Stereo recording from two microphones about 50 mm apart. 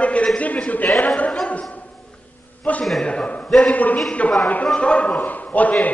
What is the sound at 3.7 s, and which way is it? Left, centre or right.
Speech, left.